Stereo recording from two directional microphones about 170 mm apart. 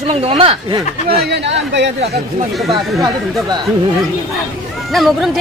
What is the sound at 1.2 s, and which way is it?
Speech, 85° right.